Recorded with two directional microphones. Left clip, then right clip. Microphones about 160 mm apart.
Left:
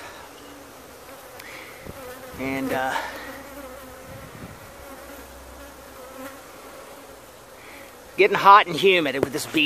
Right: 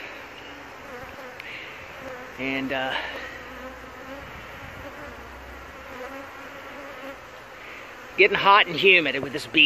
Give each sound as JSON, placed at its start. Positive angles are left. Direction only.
{"t": 2.4, "sound": "speech", "side_deg": 20}
{"t": 8.2, "sound": "speech", "side_deg": 30}